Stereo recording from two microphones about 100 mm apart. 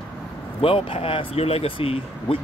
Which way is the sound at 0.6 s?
70° left (ahead or behind).